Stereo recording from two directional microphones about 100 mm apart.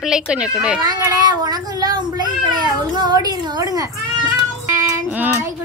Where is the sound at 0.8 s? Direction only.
40° right (ahead or behind).